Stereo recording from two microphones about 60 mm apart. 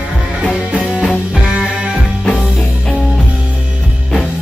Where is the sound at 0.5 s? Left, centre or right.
Centre.